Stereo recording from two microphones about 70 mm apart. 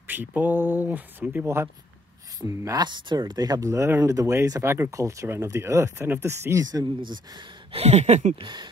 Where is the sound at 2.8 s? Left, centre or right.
Right.